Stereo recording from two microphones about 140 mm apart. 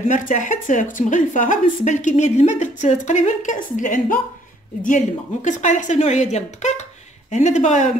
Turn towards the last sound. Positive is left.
turn(degrees=55)  # may be behind; listen again after turning